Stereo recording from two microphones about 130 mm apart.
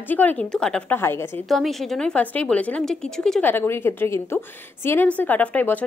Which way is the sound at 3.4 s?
15° left (ahead or behind).